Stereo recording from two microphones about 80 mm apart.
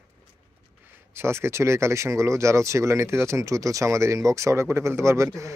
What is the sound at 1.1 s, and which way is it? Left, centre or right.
A man's voice, right.